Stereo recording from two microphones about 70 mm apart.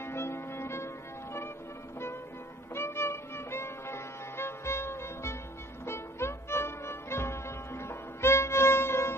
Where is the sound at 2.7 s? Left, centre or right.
Left.